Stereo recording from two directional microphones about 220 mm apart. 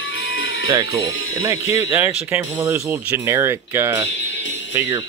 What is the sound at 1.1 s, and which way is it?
Speech, 70° left (ahead or behind).